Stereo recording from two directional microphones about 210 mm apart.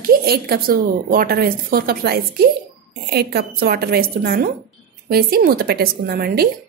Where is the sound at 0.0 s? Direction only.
45° right (ahead or behind).